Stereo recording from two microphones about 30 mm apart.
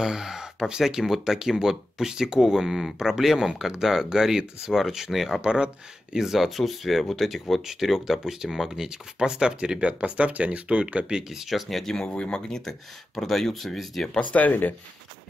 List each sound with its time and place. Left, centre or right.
0.0 s speech: centre
5.4 s speech: right
6.1 s speech: centre
7.6 s speech: centre
9.8 s speech: right
11.4 s speech: centre
12.1 s speech: left
13.2 s speech: centre
14.3 s speech: left